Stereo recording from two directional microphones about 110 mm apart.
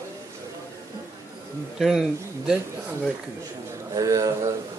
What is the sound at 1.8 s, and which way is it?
Speech, 5° right (ahead or behind).